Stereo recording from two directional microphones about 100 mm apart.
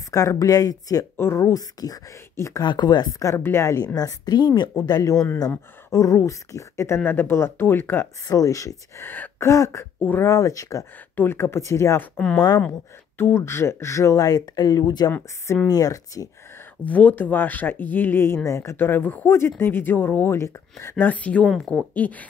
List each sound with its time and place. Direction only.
0.1 s speech: 35° left (ahead or behind)
1.1 s speech: 25° left (ahead or behind)
2.6 s speech: 45° left (ahead or behind); by 3.8 s 30° left (ahead or behind)
3.8 s a woman's voice: 40° left (ahead or behind); by 8.1 s 20° left (ahead or behind)
8.3 s speech: 35° left (ahead or behind)
9.0 s a sound: 20° left (ahead or behind)
9.5 s speech: 30° left (ahead or behind)
9.9 s speech: 20° left (ahead or behind)
10.2 s speech: 35° left (ahead or behind)
11.1 s speech: 20° left (ahead or behind); by 12.6 s 40° left (ahead or behind)
13.2 s speech: 25° left (ahead or behind); by 15.1 s 40° left (ahead or behind)
15.4 s speech: 30° left (ahead or behind)
16.8 s speech: 15° left (ahead or behind)
21.0 s speech: 15° left (ahead or behind)